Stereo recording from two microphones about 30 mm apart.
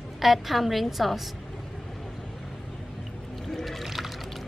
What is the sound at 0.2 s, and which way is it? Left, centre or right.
A woman's voice, centre.